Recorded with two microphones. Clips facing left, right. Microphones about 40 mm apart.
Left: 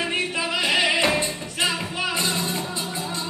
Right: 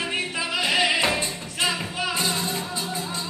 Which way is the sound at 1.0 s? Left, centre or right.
Centre.